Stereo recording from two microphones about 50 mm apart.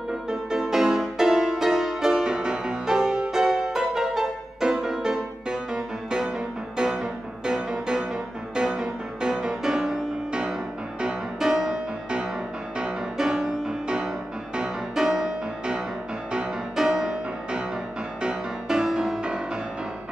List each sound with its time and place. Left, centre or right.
0.3 s music: centre